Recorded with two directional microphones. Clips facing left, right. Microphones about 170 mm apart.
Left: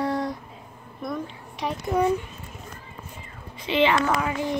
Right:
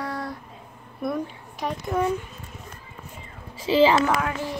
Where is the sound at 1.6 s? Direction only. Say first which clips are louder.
Left 1 dB; centre (ahead or behind).